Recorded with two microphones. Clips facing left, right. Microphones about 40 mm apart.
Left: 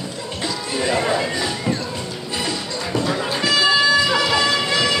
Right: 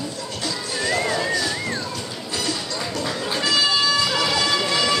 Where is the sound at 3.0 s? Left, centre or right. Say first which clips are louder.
Left 3 dB; centre.